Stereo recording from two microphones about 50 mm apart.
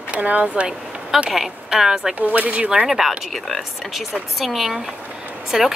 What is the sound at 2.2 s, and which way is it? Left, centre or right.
Speech, right.